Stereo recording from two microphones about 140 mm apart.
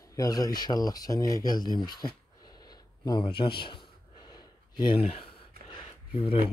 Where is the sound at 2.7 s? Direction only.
30° left (ahead or behind).